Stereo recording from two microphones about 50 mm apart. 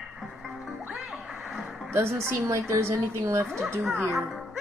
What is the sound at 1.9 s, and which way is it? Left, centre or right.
Speech, right.